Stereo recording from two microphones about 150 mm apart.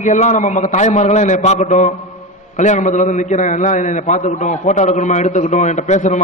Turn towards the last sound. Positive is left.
turn(degrees=50)  # may be behind; listen again after turning